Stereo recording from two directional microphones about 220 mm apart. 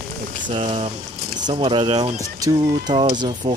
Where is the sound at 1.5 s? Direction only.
20° right (ahead or behind).